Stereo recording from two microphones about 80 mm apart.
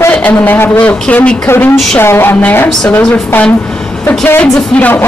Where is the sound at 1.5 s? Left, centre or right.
Left.